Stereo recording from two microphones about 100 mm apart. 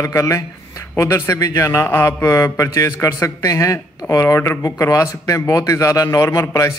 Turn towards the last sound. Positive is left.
turn(degrees=30)  # may be behind; listen again after turning